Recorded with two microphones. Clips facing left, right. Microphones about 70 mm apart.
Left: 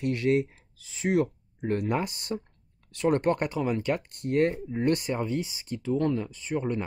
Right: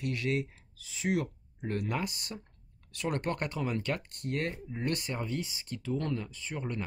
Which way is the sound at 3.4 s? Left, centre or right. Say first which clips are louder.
Left 6 dB; centre.